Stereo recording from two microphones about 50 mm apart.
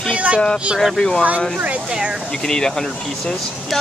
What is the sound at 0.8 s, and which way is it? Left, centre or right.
Speech, centre.